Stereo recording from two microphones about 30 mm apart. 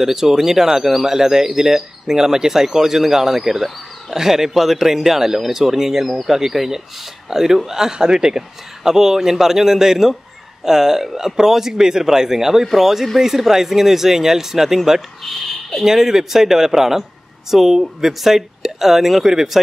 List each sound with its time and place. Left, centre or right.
0.0 s speech: centre
15.8 s speech: centre